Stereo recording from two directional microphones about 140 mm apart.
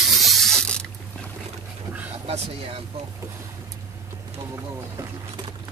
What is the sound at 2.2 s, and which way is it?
Speech, 45° right (ahead or behind).